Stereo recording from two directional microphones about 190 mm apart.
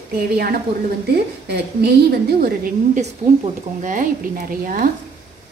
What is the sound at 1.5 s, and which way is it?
A woman's voice, 55° right (ahead or behind).